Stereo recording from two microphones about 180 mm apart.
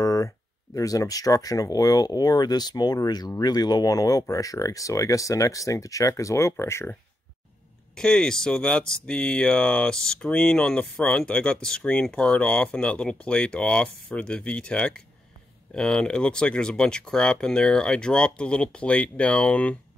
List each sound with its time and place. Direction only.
0.0 s a sound: 20° left (ahead or behind)
0.7 s speech: 20° left (ahead or behind)
7.9 s speech: 5° left (ahead or behind)